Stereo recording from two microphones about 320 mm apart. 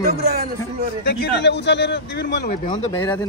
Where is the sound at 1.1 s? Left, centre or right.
Left.